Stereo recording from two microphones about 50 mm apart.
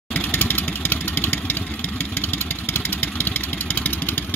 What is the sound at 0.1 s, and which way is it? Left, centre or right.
Vehicle, left.